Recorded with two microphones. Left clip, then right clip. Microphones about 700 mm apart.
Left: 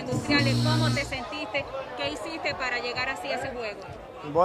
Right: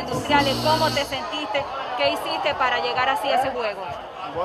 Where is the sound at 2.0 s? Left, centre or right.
Centre.